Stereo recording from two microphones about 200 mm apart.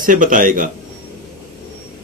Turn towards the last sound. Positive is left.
turn(degrees=-40)  # may be behind; listen again after turning